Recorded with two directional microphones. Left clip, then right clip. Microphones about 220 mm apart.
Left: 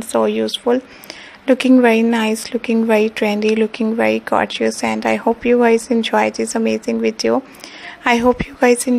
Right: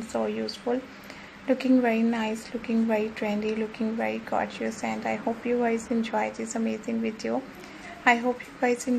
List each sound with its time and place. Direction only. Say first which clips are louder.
0.1 s a woman's voice: left 13 dB; 40° left (ahead or behind)